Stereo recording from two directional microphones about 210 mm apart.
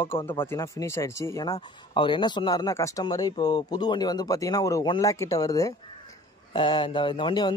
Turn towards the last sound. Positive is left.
turn(degrees=20)  # may be behind; listen again after turning